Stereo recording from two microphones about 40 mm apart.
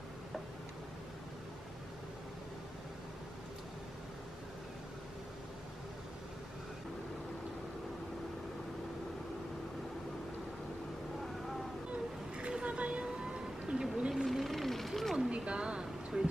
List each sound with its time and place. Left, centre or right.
11.9 s music: right
14.1 s vehicle: centre
14.5 s vehicle: centre
15.1 s a sound: right
16.1 s music: right